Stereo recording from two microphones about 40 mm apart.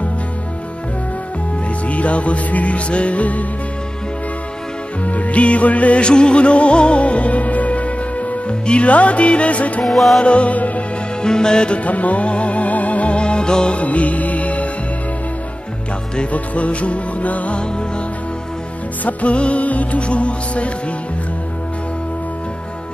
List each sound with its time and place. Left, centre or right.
1.9 s music: left
5.0 s music: left
9.8 s music: centre
10.2 s music: left
11.2 s music: centre
11.8 s music: left
13.7 s music: left
16.3 s music: left
17.6 s music: left
19.0 s music: left